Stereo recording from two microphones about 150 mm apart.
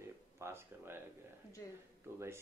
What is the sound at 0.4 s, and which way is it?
Speech, 15° right (ahead or behind).